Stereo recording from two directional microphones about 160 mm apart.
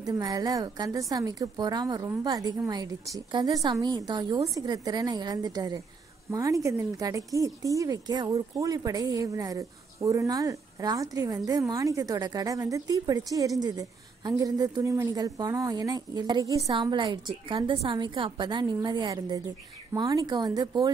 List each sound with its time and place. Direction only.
0.0 s a woman's voice: 25° right (ahead or behind)